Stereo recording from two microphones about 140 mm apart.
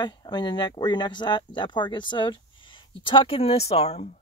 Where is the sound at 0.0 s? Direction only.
30° left (ahead or behind).